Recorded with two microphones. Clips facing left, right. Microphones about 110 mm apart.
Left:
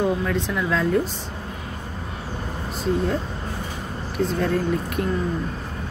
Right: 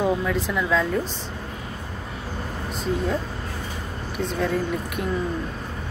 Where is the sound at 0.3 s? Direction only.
Centre (ahead or behind).